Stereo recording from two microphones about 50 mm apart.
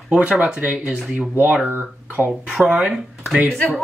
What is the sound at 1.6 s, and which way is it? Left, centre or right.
Speech, right.